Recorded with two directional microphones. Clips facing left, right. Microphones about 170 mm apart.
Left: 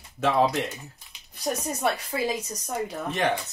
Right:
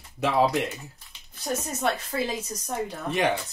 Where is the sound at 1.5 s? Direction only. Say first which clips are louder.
Left 1 dB; 20° left (ahead or behind).